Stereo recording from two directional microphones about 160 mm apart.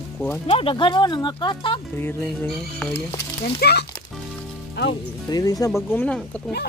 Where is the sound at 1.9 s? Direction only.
10° left (ahead or behind).